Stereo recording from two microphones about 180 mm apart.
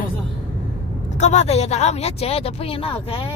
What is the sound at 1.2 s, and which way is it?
Speech, 40° left (ahead or behind).